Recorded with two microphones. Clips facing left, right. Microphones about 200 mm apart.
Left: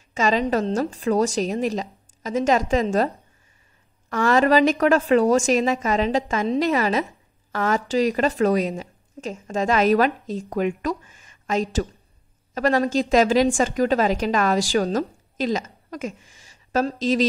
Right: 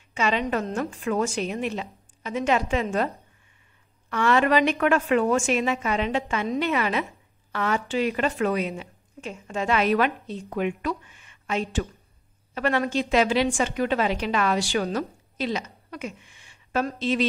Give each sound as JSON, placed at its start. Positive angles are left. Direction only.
{"t": 0.1, "sound": "a woman's voice", "side_deg": 40}
{"t": 4.1, "sound": "a woman's voice", "side_deg": 40}